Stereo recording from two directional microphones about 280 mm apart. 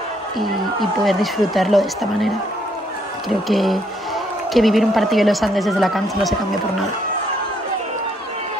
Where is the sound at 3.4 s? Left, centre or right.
Centre.